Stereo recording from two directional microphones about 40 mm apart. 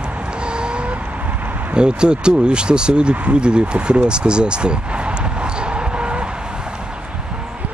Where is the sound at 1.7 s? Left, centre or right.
Right.